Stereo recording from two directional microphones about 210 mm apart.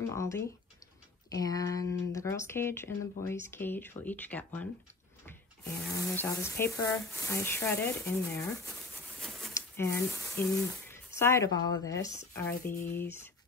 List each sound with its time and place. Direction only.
0.0 s speech: 15° left (ahead or behind)
8.9 s a sound: centre (ahead or behind)
9.5 s speech: 10° left (ahead or behind)